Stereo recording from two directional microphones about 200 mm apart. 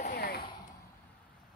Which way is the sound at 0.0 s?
50° left (ahead or behind).